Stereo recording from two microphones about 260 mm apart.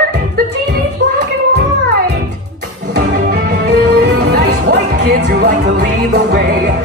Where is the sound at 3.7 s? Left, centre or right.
Right.